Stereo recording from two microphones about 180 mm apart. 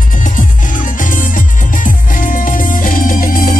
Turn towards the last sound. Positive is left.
turn(degrees=50)  # may be behind; listen again after turning